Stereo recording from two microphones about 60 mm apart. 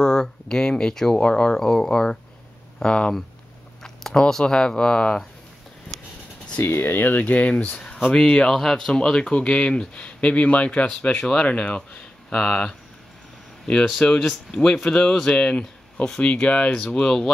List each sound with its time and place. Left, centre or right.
0.0 s speech: centre
6.6 s speech: left; by 12.7 s centre
13.9 s speech: centre